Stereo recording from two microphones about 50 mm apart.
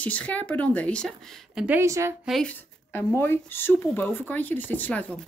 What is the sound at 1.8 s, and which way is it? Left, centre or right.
Speech, right.